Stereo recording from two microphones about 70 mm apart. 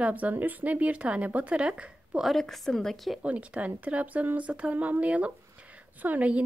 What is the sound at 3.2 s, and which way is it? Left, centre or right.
A woman's voice, centre.